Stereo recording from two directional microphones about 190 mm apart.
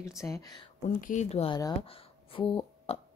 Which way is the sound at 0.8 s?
40° left (ahead or behind).